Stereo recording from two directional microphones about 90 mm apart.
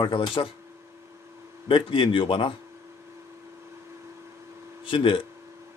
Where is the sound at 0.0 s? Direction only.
65° left (ahead or behind).